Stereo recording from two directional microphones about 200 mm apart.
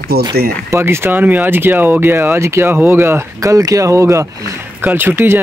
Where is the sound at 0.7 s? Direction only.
10° right (ahead or behind).